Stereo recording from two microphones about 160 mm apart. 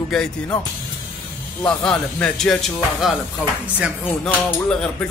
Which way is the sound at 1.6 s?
5° left (ahead or behind).